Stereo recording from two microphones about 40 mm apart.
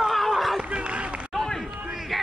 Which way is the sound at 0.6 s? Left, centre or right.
Right.